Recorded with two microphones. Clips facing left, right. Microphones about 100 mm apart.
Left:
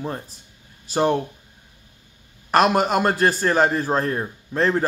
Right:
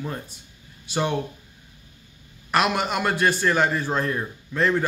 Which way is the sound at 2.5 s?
40° left (ahead or behind).